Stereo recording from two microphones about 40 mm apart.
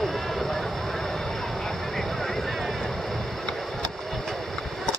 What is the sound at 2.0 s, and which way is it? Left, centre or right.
Vehicle, centre.